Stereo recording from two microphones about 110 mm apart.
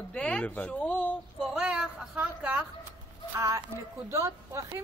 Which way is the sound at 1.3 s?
5° right (ahead or behind).